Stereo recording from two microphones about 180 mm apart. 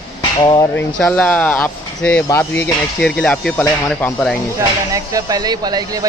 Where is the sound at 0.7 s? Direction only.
5° left (ahead or behind).